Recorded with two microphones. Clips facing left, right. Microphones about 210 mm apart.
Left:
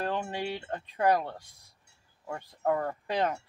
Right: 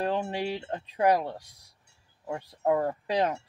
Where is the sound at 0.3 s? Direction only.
15° right (ahead or behind).